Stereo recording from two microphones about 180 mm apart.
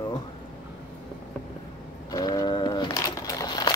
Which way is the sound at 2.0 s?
20° left (ahead or behind).